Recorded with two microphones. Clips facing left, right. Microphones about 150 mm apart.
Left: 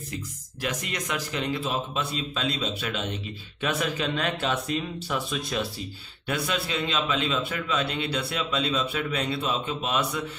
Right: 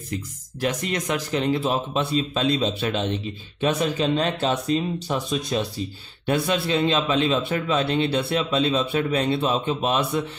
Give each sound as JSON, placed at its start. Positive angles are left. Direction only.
{"t": 0.6, "sound": "a man's voice", "side_deg": -30}